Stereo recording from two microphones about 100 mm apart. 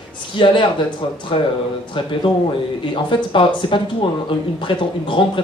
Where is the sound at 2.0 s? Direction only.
60° left (ahead or behind).